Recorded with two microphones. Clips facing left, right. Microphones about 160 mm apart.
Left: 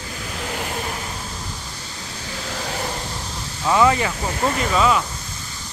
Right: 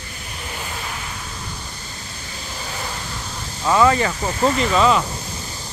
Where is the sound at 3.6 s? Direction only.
15° left (ahead or behind).